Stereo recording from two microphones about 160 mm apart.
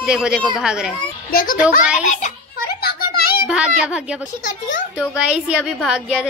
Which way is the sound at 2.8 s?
70° left (ahead or behind).